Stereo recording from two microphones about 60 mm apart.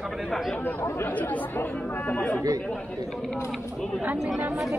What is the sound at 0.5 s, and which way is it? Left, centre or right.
Speech, left.